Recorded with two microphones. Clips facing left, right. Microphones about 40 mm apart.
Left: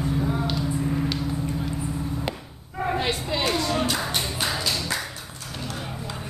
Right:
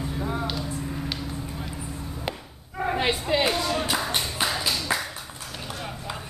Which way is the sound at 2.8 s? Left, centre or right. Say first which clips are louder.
Even; centre.